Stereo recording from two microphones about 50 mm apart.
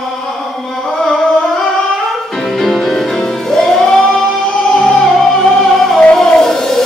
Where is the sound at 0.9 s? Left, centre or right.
Centre.